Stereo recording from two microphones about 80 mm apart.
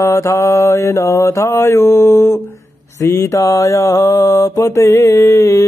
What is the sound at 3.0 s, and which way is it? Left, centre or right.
Mantra, left.